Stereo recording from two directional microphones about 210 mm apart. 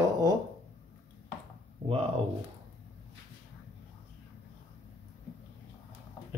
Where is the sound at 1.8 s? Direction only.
25° right (ahead or behind).